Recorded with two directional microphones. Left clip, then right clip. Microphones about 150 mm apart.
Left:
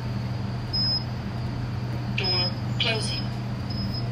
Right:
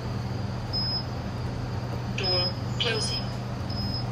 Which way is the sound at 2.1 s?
15° right (ahead or behind).